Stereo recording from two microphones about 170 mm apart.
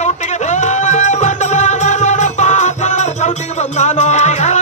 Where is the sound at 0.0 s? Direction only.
45° left (ahead or behind).